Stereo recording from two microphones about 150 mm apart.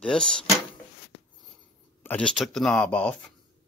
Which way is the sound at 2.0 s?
10° left (ahead or behind).